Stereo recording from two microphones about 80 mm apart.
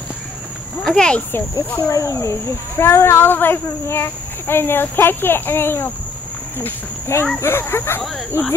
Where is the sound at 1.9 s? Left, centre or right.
Left.